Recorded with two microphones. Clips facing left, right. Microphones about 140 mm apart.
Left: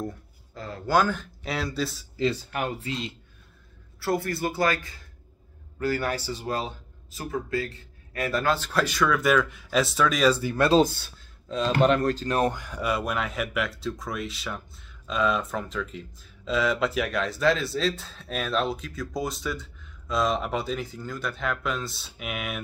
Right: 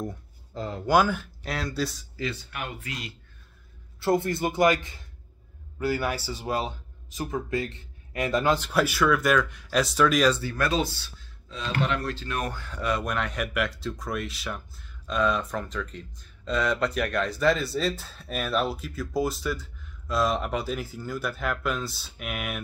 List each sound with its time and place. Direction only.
0.6 s a man's voice: 20° right (ahead or behind)
1.4 s speech: centre (ahead or behind)
2.1 s speech: 35° left (ahead or behind)
4.0 s a man's voice: 20° right (ahead or behind)
5.8 s a man's voice: 10° right (ahead or behind)
10.5 s speech: 30° left (ahead or behind)
10.8 s speech: 50° left (ahead or behind)
12.5 s speech: 10° left (ahead or behind)